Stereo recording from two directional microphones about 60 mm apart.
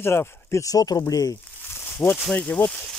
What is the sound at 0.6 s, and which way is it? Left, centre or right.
Speech, left.